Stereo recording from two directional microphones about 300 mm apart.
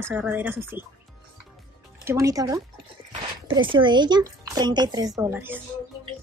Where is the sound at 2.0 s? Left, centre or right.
Centre.